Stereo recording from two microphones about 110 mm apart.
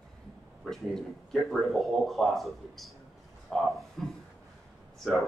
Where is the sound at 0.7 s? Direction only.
Centre (ahead or behind).